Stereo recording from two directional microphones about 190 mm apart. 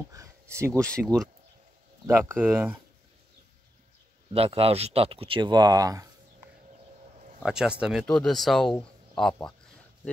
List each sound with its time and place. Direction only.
0.1 s speech: 15° right (ahead or behind)
4.3 s speech: 30° right (ahead or behind)
7.4 s speech: 5° right (ahead or behind)